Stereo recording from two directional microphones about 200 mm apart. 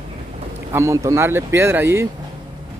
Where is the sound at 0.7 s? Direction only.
15° right (ahead or behind).